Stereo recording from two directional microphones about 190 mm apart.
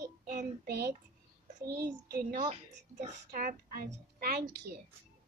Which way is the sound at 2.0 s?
45° right (ahead or behind).